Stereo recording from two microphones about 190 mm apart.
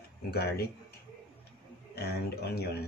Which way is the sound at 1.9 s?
55° left (ahead or behind).